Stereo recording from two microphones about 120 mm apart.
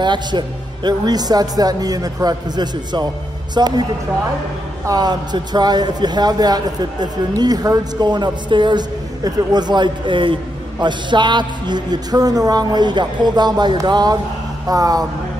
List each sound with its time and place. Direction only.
0.0 s a man's voice: 40° right (ahead or behind)
4.8 s a man's voice: 35° right (ahead or behind)